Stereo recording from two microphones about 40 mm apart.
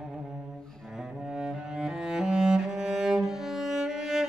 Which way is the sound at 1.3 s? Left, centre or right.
Centre.